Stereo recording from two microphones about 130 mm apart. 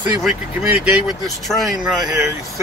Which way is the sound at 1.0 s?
Centre (ahead or behind).